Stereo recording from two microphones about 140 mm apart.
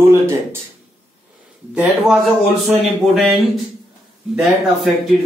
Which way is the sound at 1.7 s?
5° right (ahead or behind).